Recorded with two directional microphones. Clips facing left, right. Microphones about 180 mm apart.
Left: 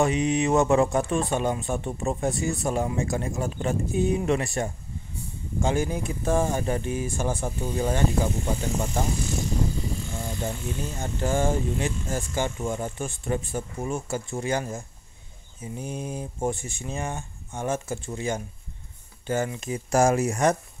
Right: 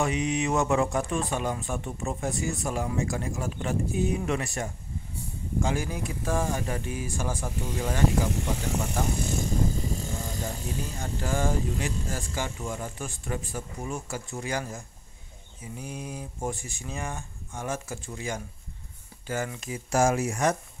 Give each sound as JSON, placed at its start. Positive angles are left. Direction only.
{"t": 0.0, "sound": "speech", "side_deg": 35}
{"t": 8.3, "sound": "speech", "side_deg": -90}
{"t": 9.2, "sound": "vehicle", "side_deg": -50}
{"t": 11.0, "sound": "speech", "side_deg": 25}
{"t": 19.9, "sound": "speech", "side_deg": 40}